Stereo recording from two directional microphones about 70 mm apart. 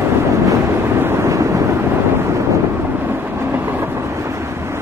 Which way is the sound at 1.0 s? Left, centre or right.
Right.